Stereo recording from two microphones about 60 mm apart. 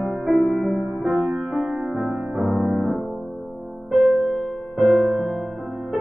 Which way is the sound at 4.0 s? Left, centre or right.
Centre.